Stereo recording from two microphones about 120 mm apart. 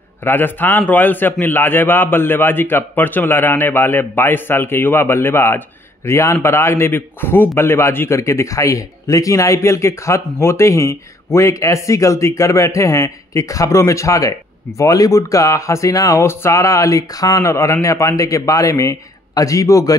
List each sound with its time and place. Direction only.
0.2 s a man's voice: 20° left (ahead or behind)